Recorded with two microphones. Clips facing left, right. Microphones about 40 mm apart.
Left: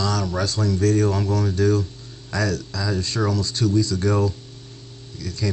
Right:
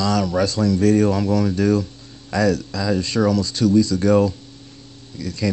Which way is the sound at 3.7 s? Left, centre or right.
Right.